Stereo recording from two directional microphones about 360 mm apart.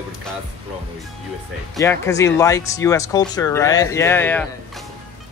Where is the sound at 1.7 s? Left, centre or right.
Centre.